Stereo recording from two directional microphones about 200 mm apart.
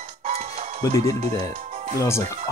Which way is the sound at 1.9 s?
15° left (ahead or behind).